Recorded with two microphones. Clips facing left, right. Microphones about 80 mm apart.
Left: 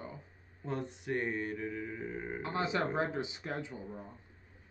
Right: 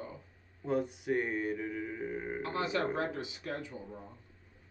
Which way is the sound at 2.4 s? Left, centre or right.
Left.